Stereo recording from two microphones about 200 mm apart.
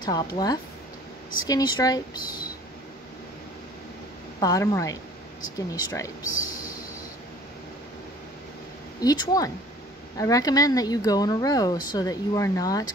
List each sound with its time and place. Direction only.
0.0 s speech: 20° left (ahead or behind)
4.4 s speech: 15° left (ahead or behind)
9.0 s speech: 20° left (ahead or behind)